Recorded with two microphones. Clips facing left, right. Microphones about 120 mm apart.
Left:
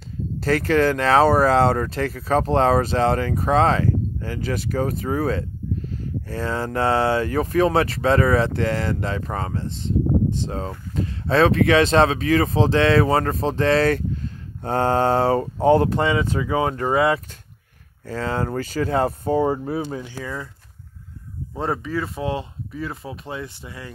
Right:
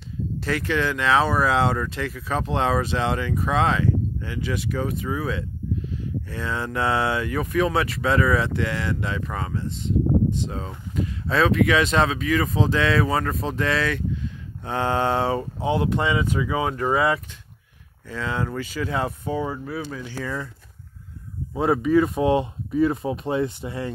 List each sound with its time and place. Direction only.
0.4 s speech: 40° left (ahead or behind)
20.1 s speech: 15° left (ahead or behind)
21.5 s speech: 10° right (ahead or behind)